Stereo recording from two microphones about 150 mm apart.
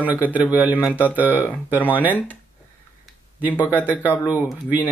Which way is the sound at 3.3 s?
10° right (ahead or behind).